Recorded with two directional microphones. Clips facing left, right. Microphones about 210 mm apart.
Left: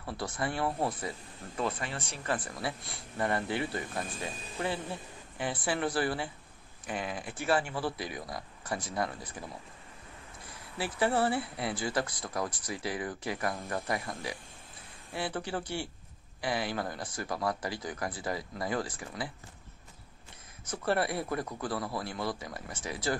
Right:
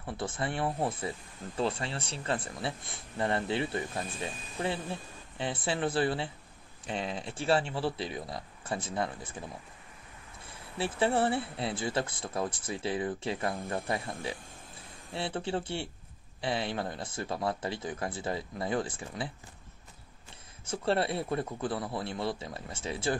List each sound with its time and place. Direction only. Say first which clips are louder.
0.0 s speech: even; 20° right (ahead or behind)
10.8 s speech: right 1 dB; 20° right (ahead or behind)
20.6 s speech: right 1 dB; 25° right (ahead or behind)